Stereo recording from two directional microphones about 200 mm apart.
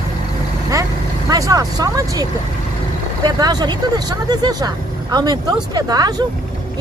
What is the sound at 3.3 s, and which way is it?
Speech, 20° right (ahead or behind).